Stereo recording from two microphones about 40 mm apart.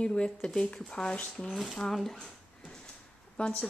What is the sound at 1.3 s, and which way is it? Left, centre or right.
Speech, centre.